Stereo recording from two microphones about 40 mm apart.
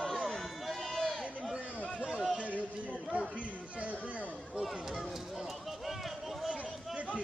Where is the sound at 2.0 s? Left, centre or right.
Centre.